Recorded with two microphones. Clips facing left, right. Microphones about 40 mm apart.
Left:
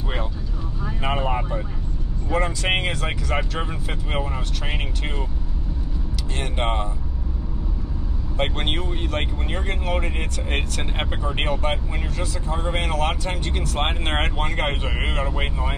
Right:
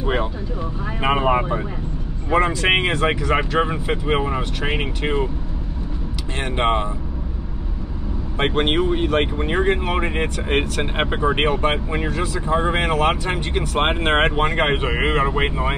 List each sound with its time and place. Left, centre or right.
0.0 s vehicle: right
0.8 s speech: right
6.3 s speech: right
8.4 s speech: right